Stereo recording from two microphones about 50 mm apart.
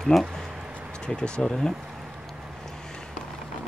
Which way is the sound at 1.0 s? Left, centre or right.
Centre.